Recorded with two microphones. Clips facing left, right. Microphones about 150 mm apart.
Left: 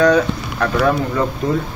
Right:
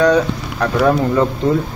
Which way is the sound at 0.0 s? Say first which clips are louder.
Even; 20° right (ahead or behind).